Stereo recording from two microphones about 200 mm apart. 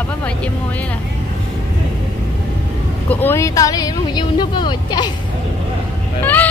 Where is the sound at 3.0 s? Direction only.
10° left (ahead or behind).